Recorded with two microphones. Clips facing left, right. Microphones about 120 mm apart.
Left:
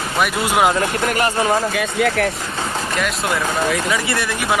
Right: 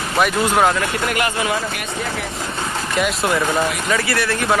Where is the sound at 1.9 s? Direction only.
65° left (ahead or behind).